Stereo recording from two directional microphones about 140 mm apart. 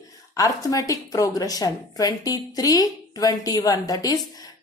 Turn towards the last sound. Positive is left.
turn(degrees=25)  # may be behind; listen again after turning